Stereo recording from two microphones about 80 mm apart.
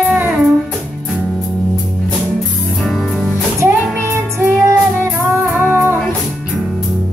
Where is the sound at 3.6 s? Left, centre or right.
Right.